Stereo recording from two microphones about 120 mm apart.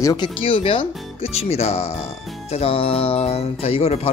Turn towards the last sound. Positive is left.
turn(degrees=60)  # may be behind; listen again after turning